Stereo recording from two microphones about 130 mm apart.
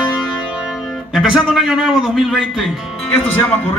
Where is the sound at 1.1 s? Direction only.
5° right (ahead or behind).